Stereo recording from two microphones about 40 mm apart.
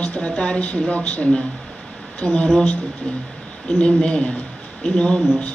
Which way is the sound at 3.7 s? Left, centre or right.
Left.